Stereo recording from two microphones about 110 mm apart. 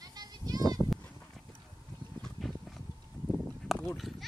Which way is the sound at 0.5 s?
35° right (ahead or behind).